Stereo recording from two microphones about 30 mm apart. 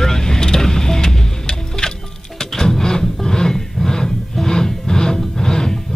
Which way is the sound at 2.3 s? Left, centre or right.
Centre.